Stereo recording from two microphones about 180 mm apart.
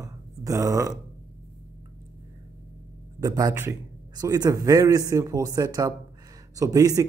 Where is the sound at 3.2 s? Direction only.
20° right (ahead or behind).